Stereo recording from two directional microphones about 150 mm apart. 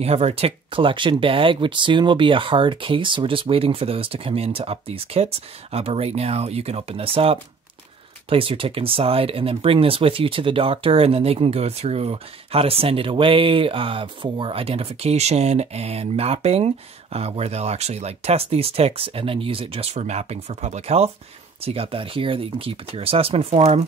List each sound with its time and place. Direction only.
0.0 s speech: 45° right (ahead or behind)